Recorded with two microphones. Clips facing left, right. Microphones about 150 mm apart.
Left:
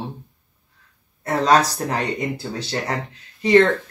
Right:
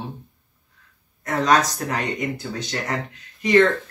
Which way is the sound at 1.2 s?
30° left (ahead or behind).